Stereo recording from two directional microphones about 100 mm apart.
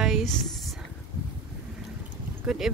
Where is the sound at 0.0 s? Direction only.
Centre (ahead or behind).